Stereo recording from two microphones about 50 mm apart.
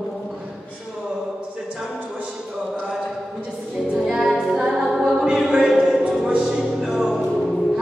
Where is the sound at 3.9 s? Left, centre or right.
Centre.